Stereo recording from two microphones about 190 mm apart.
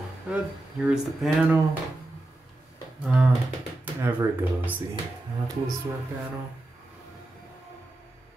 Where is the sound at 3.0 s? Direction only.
5° right (ahead or behind).